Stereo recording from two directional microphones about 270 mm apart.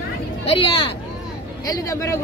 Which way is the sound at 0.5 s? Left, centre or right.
Centre.